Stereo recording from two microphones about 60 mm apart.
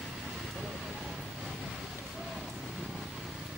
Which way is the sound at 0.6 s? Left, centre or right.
Centre.